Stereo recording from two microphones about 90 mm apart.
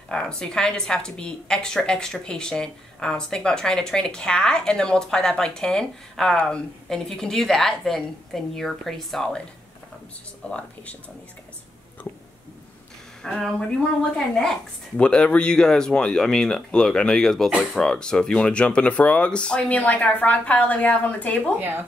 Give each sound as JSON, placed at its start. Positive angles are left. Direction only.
{"t": 0.1, "sound": "a woman's voice", "side_deg": 10}
{"t": 10.4, "sound": "a woman's voice", "side_deg": 15}
{"t": 12.0, "sound": "a sound", "side_deg": 20}
{"t": 13.2, "sound": "a woman's voice", "side_deg": 5}
{"t": 21.5, "sound": "speech", "side_deg": -20}